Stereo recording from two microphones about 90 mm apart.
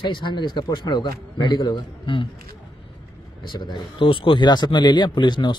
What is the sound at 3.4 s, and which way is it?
Speech, 60° left (ahead or behind).